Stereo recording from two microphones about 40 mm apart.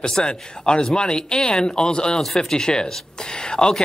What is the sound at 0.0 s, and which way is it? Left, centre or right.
Speech, centre.